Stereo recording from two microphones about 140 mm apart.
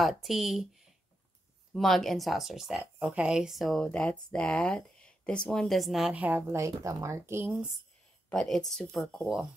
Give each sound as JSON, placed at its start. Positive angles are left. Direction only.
{"t": 0.0, "sound": "speech", "side_deg": 0}
{"t": 8.3, "sound": "speech", "side_deg": 5}